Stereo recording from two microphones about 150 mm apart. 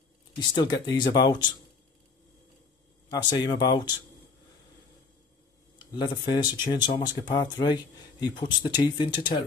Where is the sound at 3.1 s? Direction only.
30° left (ahead or behind).